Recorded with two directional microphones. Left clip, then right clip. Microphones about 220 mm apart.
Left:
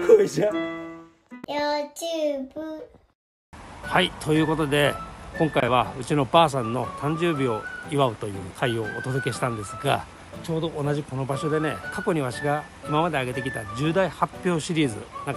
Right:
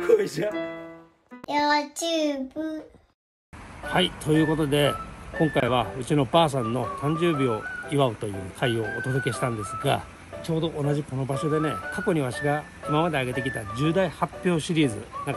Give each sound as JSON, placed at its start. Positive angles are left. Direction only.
{"t": 0.0, "sound": "music", "side_deg": 5}
{"t": 1.5, "sound": "speech", "side_deg": 0}
{"t": 2.0, "sound": "child singing", "side_deg": -25}
{"t": 3.9, "sound": "speech", "side_deg": 0}